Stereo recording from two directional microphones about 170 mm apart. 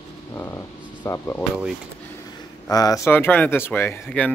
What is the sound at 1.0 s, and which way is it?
Speech, 15° left (ahead or behind).